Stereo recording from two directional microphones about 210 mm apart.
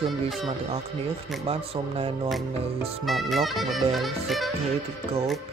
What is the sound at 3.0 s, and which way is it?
Speech, centre (ahead or behind).